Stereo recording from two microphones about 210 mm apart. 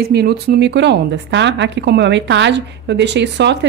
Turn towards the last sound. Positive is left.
turn(degrees=-55)  # may be behind; listen again after turning